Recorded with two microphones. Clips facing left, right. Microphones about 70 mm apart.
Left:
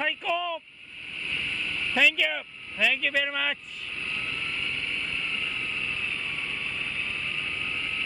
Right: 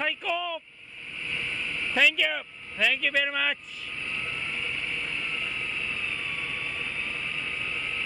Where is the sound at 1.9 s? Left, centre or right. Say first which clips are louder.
Even; centre.